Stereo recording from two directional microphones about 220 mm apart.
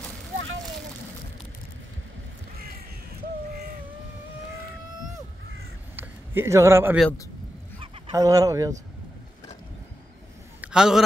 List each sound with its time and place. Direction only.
5.9 s a sound: 10° right (ahead or behind)
7.8 s speech: 15° right (ahead or behind)
10.6 s a man's voice: 5° right (ahead or behind)